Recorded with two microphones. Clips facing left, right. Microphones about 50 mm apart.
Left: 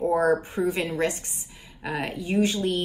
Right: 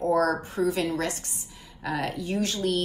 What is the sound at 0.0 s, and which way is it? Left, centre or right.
Speech, centre.